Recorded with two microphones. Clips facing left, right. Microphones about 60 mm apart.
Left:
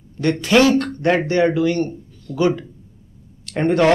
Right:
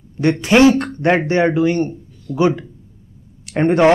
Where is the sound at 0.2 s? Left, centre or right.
Right.